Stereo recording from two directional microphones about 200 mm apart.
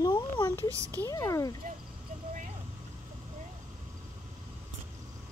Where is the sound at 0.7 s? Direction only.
15° right (ahead or behind).